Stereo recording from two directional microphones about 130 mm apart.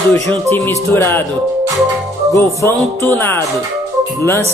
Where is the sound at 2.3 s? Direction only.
20° left (ahead or behind).